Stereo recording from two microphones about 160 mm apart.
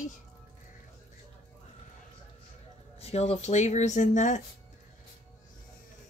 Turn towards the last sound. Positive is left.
turn(degrees=50)  # may be behind; listen again after turning